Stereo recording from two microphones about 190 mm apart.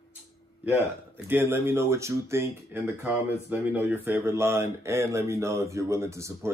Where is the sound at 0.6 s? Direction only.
10° right (ahead or behind).